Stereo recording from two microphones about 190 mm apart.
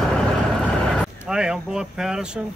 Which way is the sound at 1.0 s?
5° right (ahead or behind).